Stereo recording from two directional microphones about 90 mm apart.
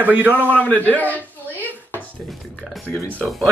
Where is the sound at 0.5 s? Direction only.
20° left (ahead or behind).